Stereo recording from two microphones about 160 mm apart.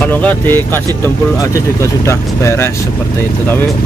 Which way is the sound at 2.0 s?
15° left (ahead or behind).